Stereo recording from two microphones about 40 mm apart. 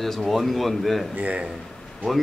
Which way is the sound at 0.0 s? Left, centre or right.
Centre.